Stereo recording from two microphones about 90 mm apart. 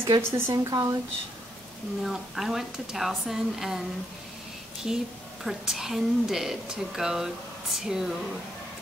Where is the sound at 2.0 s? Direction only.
5° right (ahead or behind).